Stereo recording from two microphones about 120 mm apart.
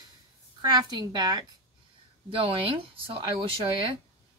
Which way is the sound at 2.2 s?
50° right (ahead or behind).